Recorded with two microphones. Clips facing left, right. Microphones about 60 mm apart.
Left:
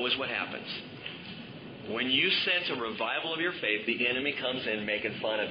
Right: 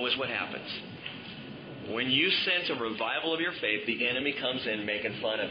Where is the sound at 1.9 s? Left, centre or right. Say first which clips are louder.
Right 1 dB; centre.